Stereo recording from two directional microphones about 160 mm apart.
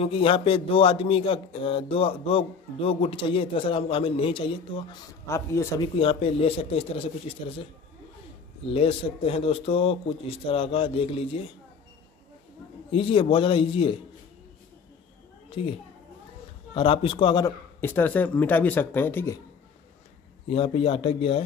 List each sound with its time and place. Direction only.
0.0 s a man's voice: 35° left (ahead or behind)
5.2 s speech: 15° left (ahead or behind)
5.8 s a man's voice: 35° left (ahead or behind)
8.7 s a man's voice: 35° left (ahead or behind)
12.9 s a man's voice: 35° left (ahead or behind)
15.6 s a man's voice: 35° left (ahead or behind)
16.7 s a man's voice: 30° left (ahead or behind)
17.7 s speech: 15° left (ahead or behind)
20.4 s a man's voice: 35° left (ahead or behind)